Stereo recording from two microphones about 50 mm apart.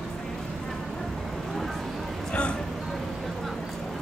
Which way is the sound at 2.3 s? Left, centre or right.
Centre.